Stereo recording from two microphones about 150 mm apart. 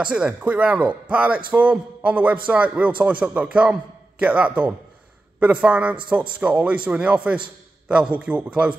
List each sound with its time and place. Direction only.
0.0 s speech: 5° right (ahead or behind)